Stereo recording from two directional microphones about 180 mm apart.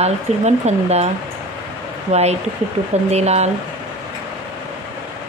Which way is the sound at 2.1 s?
35° right (ahead or behind).